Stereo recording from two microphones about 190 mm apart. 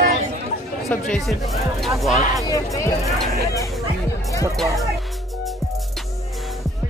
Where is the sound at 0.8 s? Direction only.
Centre (ahead or behind).